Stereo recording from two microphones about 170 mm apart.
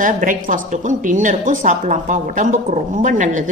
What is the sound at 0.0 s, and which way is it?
A woman's voice, 50° right (ahead or behind).